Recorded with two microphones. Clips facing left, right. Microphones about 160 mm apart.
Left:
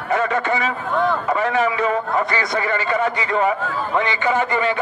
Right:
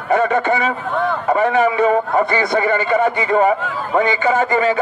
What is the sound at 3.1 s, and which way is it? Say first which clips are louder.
Speech: right 5 dB; 45° right (ahead or behind).